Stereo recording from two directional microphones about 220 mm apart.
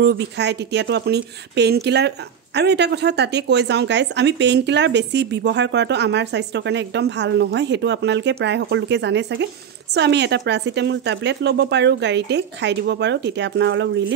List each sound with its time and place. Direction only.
0.0 s speech: 50° right (ahead or behind)